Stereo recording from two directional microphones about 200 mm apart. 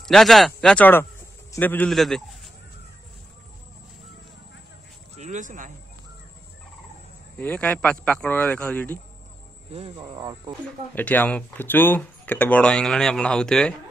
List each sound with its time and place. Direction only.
0.1 s a man's voice: centre (ahead or behind)
5.1 s speech: 35° right (ahead or behind)
7.3 s speech: 5° left (ahead or behind)
9.7 s speech: 25° right (ahead or behind)
11.0 s speech: 10° left (ahead or behind)